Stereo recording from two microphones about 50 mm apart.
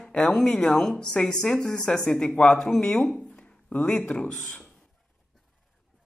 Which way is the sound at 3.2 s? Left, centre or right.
Centre.